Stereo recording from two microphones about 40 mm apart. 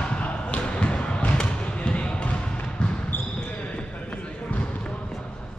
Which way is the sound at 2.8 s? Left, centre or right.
Left.